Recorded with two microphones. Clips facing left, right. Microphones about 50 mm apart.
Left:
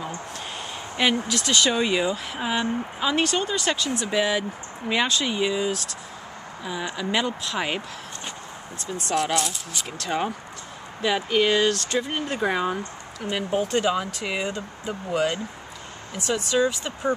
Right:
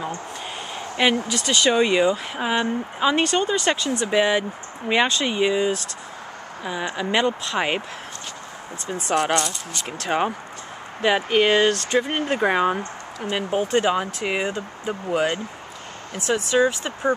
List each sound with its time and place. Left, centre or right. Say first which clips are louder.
1.0 s speech: right 2 dB; centre
9.0 s speech: right 3 dB; centre
9.9 s speech: right 4 dB; right
14.4 s speech: right 3 dB; centre
16.5 s speech: right 3 dB; right